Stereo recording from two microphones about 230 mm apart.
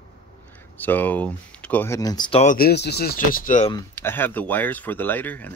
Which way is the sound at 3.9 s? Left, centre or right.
Centre.